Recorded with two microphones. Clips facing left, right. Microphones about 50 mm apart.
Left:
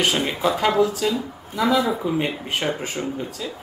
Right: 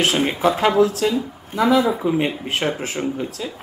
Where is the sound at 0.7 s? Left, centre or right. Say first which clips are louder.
Right 3 dB; right.